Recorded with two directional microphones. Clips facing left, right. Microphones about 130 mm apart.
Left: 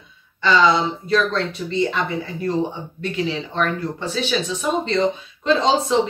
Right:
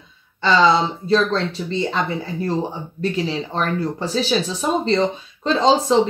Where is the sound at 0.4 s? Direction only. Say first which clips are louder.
Right 1 dB; 30° right (ahead or behind).